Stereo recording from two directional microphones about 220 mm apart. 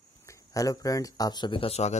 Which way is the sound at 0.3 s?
15° left (ahead or behind).